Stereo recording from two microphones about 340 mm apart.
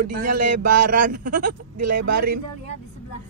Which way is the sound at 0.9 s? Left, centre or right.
Right.